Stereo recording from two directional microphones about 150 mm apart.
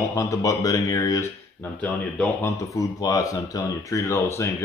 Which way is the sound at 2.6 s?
20° left (ahead or behind).